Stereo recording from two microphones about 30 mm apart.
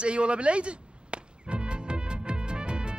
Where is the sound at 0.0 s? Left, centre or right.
Right.